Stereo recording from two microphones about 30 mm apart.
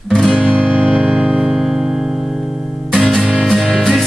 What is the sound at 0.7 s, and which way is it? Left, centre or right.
Music, right.